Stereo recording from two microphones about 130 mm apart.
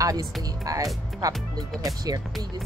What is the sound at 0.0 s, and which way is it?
Speech, 25° right (ahead or behind).